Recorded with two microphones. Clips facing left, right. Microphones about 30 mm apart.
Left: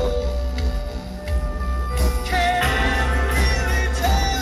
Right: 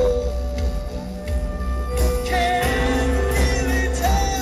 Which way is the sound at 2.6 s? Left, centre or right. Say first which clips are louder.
Left 1 dB; centre.